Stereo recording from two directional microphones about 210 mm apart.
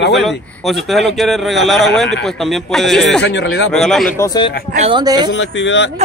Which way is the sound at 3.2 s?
55° left (ahead or behind).